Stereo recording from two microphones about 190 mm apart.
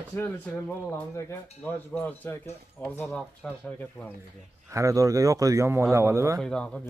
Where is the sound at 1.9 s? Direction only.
10° left (ahead or behind).